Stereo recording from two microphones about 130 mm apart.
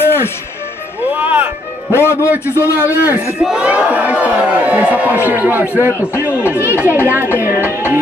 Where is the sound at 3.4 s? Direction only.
10° right (ahead or behind).